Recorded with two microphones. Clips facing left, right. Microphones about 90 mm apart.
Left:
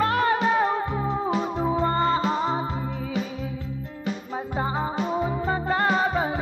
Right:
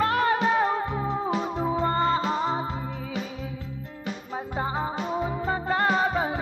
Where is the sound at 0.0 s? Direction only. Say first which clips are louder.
Left 1 dB; 10° left (ahead or behind).